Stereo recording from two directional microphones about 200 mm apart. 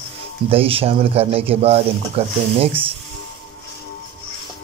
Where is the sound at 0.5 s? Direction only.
30° right (ahead or behind).